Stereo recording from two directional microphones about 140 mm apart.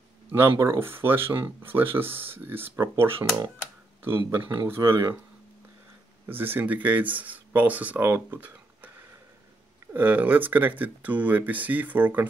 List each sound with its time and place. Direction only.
0.3 s speech: 20° right (ahead or behind)
4.6 s speech: 20° right (ahead or behind)
6.2 s speech: 15° right (ahead or behind)
9.9 s speech: 10° right (ahead or behind)